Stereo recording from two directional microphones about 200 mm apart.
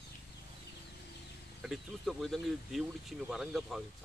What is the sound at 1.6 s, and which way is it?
Speech, centre (ahead or behind).